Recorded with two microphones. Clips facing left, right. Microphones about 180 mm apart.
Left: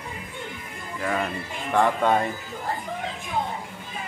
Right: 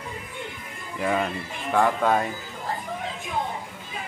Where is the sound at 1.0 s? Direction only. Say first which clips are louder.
Right 2 dB; 5° right (ahead or behind).